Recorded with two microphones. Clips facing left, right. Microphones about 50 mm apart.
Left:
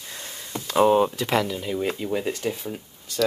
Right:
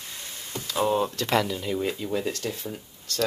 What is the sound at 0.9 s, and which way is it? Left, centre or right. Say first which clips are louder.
Speech: left 3 dB; centre.